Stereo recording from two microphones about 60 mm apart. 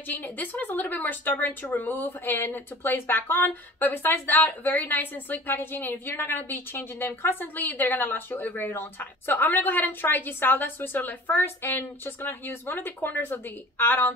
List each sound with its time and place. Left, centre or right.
0.1 s a woman's voice: left